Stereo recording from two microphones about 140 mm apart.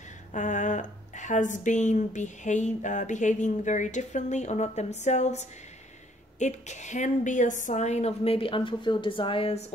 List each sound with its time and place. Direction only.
0.3 s a woman's voice: 65° left (ahead or behind); by 9.7 s 45° left (ahead or behind)